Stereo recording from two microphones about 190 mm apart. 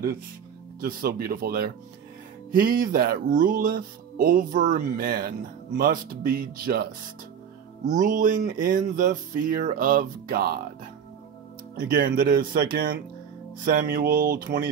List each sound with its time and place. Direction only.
0.7 s speech: 50° right (ahead or behind)
7.8 s speech: 40° right (ahead or behind)
11.7 s speech: 50° right (ahead or behind)